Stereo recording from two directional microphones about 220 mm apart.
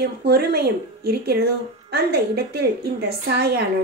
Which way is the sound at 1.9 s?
45° right (ahead or behind).